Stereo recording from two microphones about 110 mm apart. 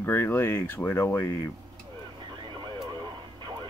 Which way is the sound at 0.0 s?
20° left (ahead or behind).